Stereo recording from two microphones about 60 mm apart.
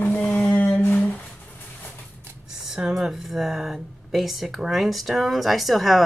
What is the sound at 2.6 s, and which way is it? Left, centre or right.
Speech, centre.